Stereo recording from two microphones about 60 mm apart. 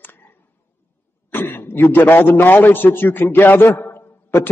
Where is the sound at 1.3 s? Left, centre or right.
Left.